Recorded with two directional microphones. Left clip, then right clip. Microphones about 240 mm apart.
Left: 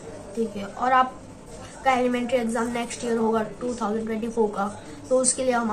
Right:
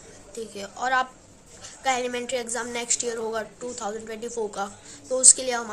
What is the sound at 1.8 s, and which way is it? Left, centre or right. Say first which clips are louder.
A woman's voice: left 4 dB; right.